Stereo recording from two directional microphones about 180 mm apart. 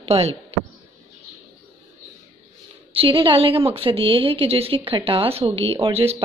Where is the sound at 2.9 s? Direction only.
30° right (ahead or behind).